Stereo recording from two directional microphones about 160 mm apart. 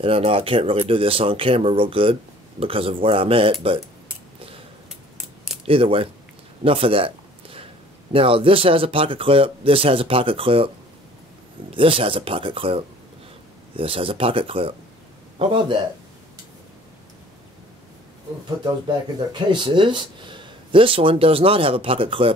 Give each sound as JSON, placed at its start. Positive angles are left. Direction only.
{"t": 0.0, "sound": "speech", "side_deg": -35}
{"t": 5.7, "sound": "speech", "side_deg": -35}
{"t": 6.6, "sound": "a sound", "side_deg": -35}
{"t": 8.1, "sound": "speech", "side_deg": -35}
{"t": 11.7, "sound": "speech", "side_deg": -35}
{"t": 19.3, "sound": "speech", "side_deg": -30}